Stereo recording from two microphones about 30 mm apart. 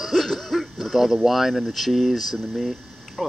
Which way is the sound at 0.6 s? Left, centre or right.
Centre.